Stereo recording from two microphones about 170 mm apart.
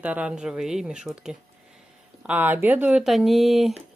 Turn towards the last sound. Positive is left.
turn(degrees=0)  # may be behind; listen again after turning